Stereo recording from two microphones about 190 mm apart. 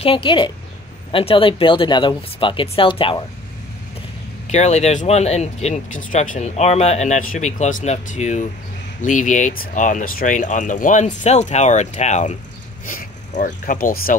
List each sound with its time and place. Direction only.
0.0 s speech: 25° left (ahead or behind)
4.5 s speech: 35° left (ahead or behind)
12.8 s a sound: 45° left (ahead or behind)
13.7 s speech: 45° left (ahead or behind)